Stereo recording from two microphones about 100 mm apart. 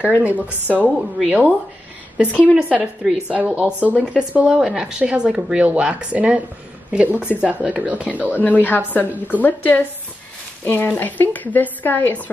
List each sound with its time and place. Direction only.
0.0 s a woman's voice: 15° right (ahead or behind)
8.5 s speech: 15° left (ahead or behind)